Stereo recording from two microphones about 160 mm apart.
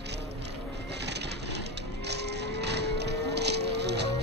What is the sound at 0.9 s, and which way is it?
Music, 90° right.